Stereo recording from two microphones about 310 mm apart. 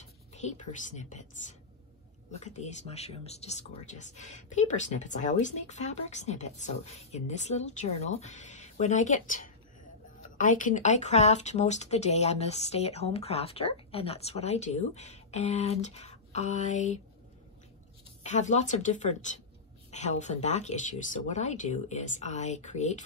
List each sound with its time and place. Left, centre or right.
0.0 s speech: left
18.2 s speech: left